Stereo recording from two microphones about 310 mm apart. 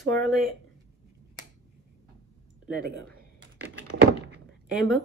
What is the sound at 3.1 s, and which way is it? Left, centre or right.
Computer keyboard, right.